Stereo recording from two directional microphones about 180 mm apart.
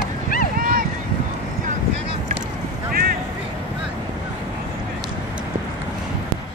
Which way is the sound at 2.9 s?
55° right (ahead or behind).